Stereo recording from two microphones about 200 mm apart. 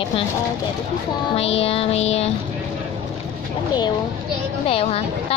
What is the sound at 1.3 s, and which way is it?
Child singing, 30° left (ahead or behind).